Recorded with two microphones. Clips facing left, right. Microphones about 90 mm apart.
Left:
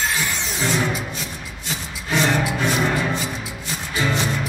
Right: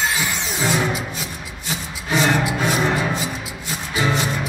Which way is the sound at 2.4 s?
5° right (ahead or behind).